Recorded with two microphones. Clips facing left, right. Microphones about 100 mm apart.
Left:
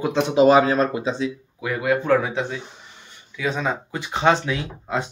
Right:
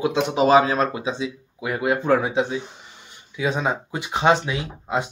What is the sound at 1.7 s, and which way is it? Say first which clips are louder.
Speech: left 1 dB; 25° right (ahead or behind).